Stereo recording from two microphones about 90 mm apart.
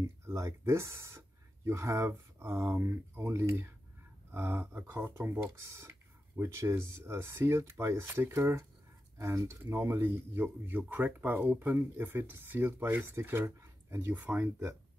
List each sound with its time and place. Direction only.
0.3 s speech: 35° right (ahead or behind)